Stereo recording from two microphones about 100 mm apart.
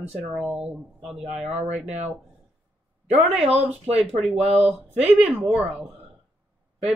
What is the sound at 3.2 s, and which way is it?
Speech, 15° right (ahead or behind).